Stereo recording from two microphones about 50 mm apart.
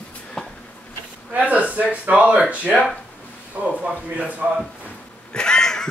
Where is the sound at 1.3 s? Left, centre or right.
Right.